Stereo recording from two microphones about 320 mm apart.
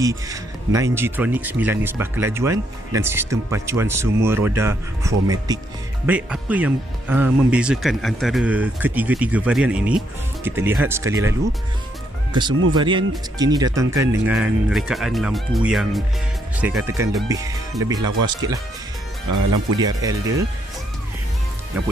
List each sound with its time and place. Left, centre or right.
0.0 s speech: centre
19.2 s speech: right
19.8 s speech: centre